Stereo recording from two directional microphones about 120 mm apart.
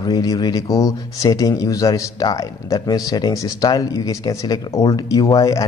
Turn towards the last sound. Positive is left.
turn(degrees=30)  # may be behind; listen again after turning